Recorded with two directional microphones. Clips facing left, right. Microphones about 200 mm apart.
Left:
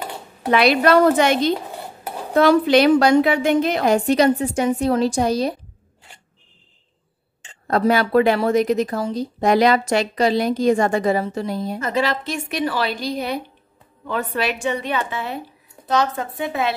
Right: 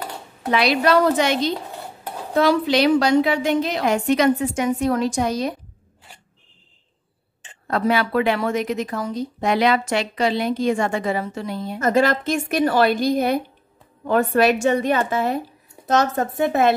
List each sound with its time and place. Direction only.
0.5 s a woman's voice: 55° left (ahead or behind)
3.8 s speech: 35° left (ahead or behind)
7.6 s speech: 40° left (ahead or behind)
11.8 s speech: 50° right (ahead or behind)